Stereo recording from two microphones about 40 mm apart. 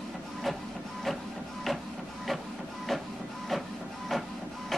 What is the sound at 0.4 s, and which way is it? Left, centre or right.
Printer, centre.